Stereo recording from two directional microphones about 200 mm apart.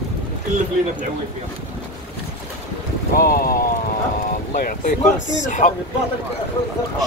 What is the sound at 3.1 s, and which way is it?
Speech, 45° left (ahead or behind).